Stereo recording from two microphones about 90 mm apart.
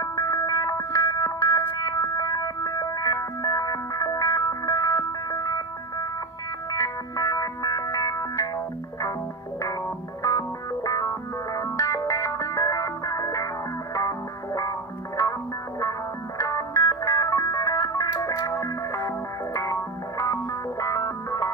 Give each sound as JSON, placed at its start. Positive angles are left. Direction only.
{"t": 0.0, "sound": "music", "side_deg": 35}
{"t": 10.2, "sound": "music", "side_deg": 35}
{"t": 16.3, "sound": "music", "side_deg": 35}